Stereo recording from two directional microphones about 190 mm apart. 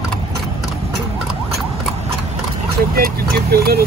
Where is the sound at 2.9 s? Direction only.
50° right (ahead or behind).